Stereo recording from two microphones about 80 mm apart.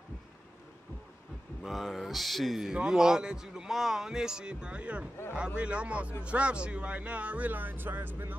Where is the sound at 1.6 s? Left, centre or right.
Centre.